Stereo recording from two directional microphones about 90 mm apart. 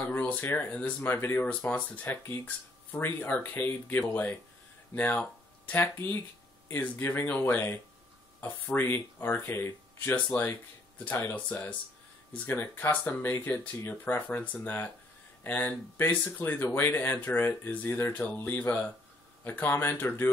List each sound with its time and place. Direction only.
0.0 s speech: 15° left (ahead or behind)